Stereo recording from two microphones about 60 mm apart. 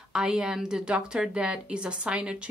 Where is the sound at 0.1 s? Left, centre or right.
Centre.